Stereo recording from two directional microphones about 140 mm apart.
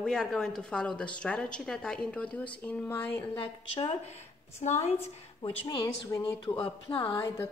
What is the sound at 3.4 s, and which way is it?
Speech, 40° left (ahead or behind).